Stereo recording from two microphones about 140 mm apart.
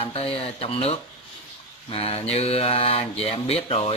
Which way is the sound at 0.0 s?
45° left (ahead or behind).